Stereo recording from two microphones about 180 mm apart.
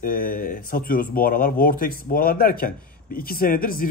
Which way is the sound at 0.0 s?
55° left (ahead or behind).